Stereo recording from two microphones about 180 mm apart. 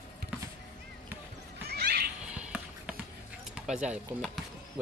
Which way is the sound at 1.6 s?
60° right (ahead or behind).